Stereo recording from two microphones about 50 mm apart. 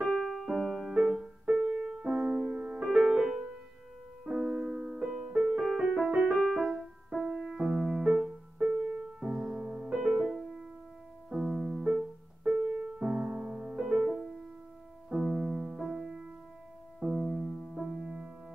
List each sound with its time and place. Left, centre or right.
0.1 s music: centre
1.0 s music: centre
1.5 s music: centre
4.5 s music: right; by 6.0 s centre
6.0 s music: right
6.3 s music: centre
10.2 s music: centre
17.0 s music: centre